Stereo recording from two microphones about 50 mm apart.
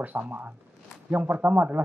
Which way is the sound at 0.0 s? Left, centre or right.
Right.